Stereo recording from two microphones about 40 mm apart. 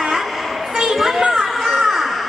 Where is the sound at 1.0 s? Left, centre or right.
Centre.